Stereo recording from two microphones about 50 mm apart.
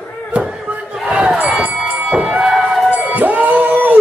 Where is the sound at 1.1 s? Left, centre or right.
Right.